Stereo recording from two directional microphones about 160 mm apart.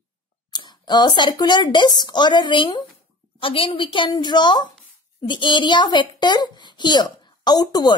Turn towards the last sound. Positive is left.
turn(degrees=25)  # may be behind; listen again after turning